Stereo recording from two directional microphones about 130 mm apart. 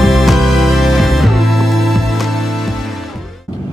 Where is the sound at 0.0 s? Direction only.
Centre (ahead or behind).